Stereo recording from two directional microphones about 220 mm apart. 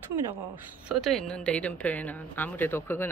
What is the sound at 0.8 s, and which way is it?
Speech, centre (ahead or behind).